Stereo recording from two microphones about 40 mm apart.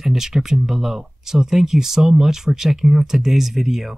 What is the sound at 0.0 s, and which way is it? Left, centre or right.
Speech, centre.